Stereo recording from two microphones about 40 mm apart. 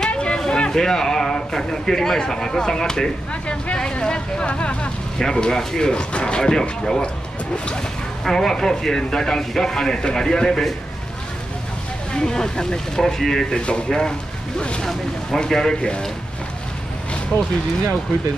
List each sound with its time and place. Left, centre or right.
0.1 s a sound: left
0.5 s speech: centre
8.3 s speech: centre
12.1 s speech: centre
13.6 s speech: left
14.9 s speech: centre